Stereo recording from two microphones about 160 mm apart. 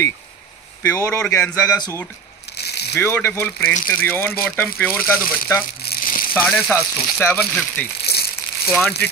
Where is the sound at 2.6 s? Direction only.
90° left.